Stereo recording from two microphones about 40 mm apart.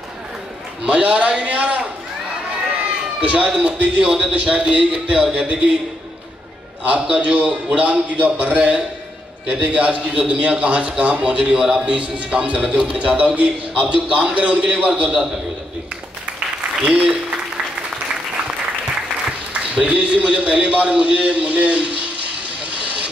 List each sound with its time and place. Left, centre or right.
0.8 s a man's voice: right
3.2 s a man's voice: right
6.8 s a man's voice: right
14.9 s a man's voice: centre
19.7 s a man's voice: right